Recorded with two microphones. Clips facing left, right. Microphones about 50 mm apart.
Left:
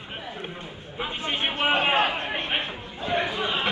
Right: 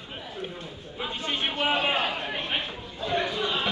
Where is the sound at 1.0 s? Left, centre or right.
Left.